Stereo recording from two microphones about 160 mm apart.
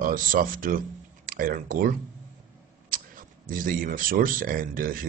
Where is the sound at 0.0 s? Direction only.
60° right (ahead or behind).